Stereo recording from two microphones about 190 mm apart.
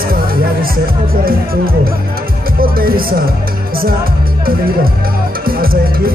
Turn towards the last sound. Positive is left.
turn(degrees=-50)  # may be behind; listen again after turning